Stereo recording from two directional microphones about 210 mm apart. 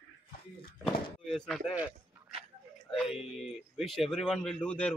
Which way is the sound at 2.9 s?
Centre (ahead or behind).